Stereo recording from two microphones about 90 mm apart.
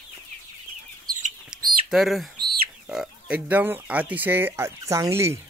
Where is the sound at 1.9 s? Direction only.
Centre (ahead or behind).